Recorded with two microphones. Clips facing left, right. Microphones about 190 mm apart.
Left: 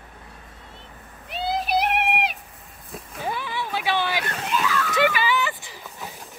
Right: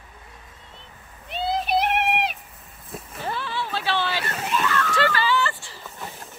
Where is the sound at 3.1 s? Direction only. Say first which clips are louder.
Left 1 dB; 15° left (ahead or behind).